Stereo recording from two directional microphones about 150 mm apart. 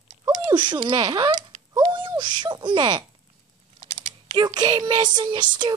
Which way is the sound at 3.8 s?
45° right (ahead or behind).